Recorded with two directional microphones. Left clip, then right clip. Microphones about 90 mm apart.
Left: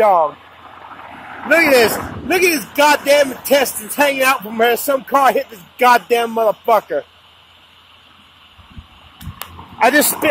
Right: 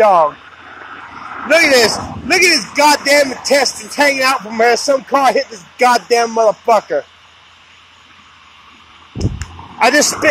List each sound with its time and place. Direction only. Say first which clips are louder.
0.0 s speech: right 3 dB; 5° right (ahead or behind)
0.7 s a sound: right 3 dB; 10° left (ahead or behind)
1.5 s speech: right 1 dB; 10° right (ahead or behind)
4.7 s speech: right 2 dB; 20° right (ahead or behind)
9.8 s speech: right 2 dB; 5° left (ahead or behind)